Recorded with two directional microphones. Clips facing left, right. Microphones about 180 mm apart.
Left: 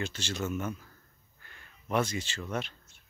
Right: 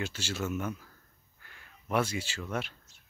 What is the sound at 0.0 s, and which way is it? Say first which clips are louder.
Speech: even; 10° right (ahead or behind).